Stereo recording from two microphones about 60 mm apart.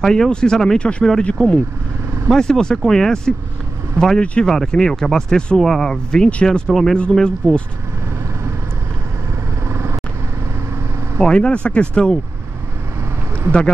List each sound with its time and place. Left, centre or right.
0.0 s speech: centre
2.2 s speech: centre
9.7 s vehicle: right
11.1 s speech: centre